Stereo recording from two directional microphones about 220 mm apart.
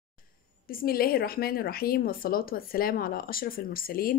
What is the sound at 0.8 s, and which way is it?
Speech, 45° left (ahead or behind).